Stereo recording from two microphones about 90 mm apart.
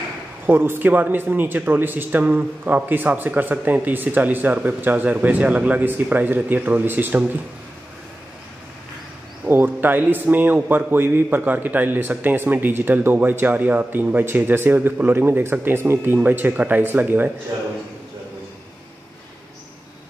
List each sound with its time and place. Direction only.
0.5 s a man's voice: 20° right (ahead or behind)
9.5 s a man's voice: 20° right (ahead or behind)
17.5 s a man's voice: 55° right (ahead or behind)